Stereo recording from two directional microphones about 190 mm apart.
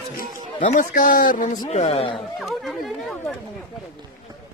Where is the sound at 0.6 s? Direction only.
40° left (ahead or behind).